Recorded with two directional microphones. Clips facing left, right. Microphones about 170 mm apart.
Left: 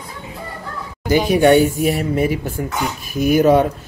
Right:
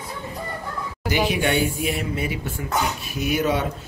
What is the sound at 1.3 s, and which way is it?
Speech, 45° left (ahead or behind).